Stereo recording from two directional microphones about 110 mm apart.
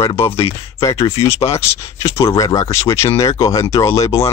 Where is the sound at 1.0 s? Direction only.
25° left (ahead or behind).